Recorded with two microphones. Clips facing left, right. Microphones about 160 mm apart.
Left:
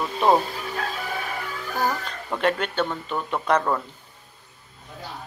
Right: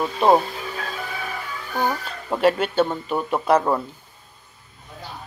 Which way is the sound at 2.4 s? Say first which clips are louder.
Right 5 dB; 5° right (ahead or behind).